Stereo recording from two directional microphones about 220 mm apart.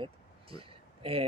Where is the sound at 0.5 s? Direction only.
25° right (ahead or behind).